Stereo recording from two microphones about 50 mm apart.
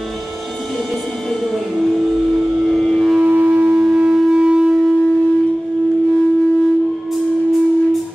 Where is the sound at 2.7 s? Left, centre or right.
Centre.